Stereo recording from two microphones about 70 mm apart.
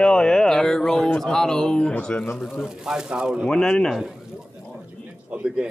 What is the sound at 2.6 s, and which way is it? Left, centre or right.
Speech, centre.